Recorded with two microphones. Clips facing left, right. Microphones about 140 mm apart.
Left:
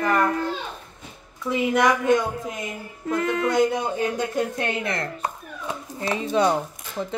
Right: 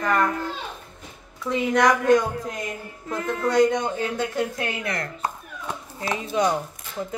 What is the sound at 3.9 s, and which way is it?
A woman's voice, 20° left (ahead or behind).